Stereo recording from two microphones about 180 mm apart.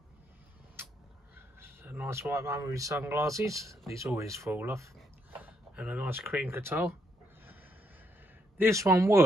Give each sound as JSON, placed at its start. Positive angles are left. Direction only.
{"t": 1.3, "sound": "speech", "side_deg": -15}
{"t": 8.5, "sound": "speech", "side_deg": -15}